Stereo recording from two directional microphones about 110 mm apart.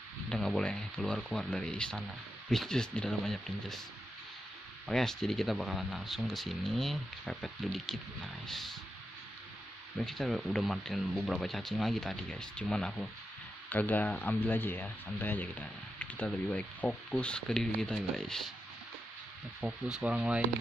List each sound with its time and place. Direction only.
0.3 s speech: 5° left (ahead or behind)
4.8 s speech: 5° left (ahead or behind)
9.9 s speech: centre (ahead or behind)
19.6 s speech: 5° right (ahead or behind)